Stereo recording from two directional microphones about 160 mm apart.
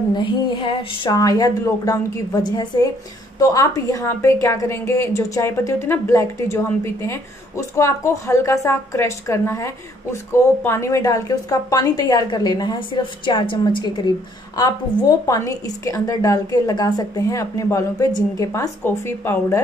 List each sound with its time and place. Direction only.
0.1 s a woman's voice: 30° left (ahead or behind); by 19.6 s 15° left (ahead or behind)